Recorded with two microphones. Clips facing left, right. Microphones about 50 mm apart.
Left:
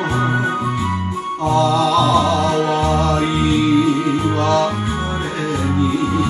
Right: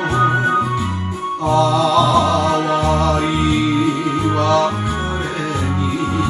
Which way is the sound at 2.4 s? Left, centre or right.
Right.